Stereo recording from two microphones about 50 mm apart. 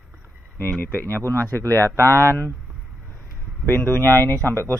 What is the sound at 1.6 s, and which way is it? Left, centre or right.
Speech, right.